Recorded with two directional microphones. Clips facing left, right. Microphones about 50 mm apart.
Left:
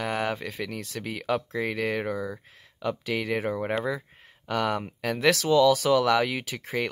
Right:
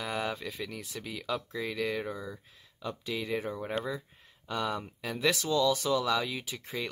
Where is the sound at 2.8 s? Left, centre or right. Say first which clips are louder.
Left 7 dB; left.